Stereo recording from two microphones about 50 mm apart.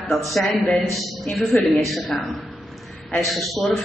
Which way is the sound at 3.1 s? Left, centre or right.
Centre.